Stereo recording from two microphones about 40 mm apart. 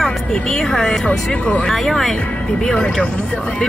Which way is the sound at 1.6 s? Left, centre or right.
Centre.